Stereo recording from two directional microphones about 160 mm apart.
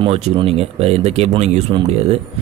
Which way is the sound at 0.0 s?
40° right (ahead or behind).